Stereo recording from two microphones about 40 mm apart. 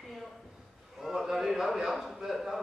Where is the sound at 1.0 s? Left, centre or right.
Centre.